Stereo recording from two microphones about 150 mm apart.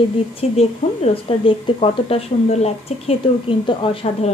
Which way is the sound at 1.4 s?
40° left (ahead or behind).